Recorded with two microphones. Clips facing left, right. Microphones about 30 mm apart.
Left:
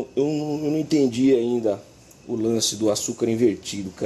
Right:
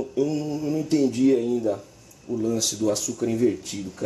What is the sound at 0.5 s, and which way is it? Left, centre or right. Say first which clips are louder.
Speech: left 2 dB; left.